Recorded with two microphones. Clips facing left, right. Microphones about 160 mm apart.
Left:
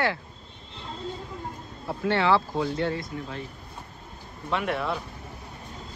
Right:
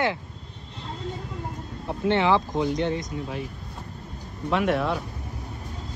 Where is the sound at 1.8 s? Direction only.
20° right (ahead or behind).